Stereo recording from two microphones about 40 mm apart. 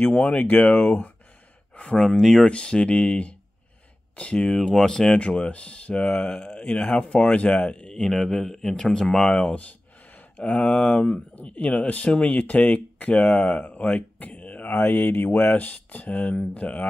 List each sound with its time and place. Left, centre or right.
0.0 s speech: left
2.0 s speech: centre
2.4 s speech: left
4.6 s speech: centre
5.2 s speech: left
7.9 s speech: centre
10.3 s speech: left
14.7 s mantra: left
15.2 s speech: left